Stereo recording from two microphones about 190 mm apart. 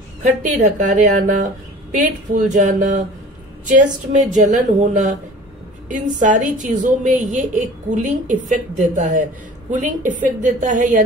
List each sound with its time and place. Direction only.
0.2 s a woman's voice: 40° right (ahead or behind)